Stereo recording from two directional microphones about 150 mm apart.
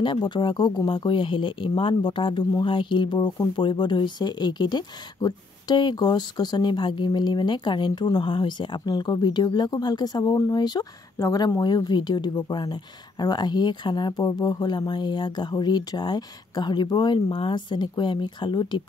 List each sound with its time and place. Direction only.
0.0 s speech: 30° left (ahead or behind)